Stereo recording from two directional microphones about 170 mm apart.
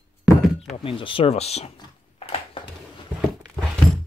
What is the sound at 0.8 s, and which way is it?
Speech, 30° left (ahead or behind).